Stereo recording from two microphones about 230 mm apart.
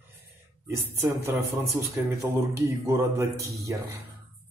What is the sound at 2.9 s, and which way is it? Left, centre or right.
Speech, centre.